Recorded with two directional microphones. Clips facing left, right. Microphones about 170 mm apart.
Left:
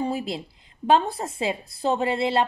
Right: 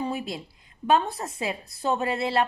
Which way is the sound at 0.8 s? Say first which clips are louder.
Left 2 dB; 30° left (ahead or behind).